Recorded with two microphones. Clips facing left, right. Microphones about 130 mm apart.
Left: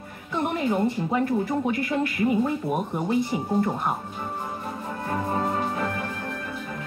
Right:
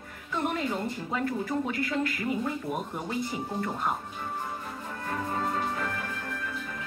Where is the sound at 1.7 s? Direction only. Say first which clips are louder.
Left 4 dB; 20° left (ahead or behind).